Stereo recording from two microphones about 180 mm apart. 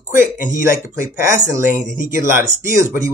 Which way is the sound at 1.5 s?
10° right (ahead or behind).